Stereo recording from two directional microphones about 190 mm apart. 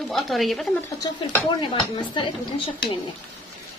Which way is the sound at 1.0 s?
20° left (ahead or behind).